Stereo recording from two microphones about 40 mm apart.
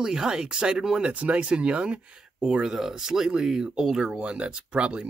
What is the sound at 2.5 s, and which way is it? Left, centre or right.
Speech, centre.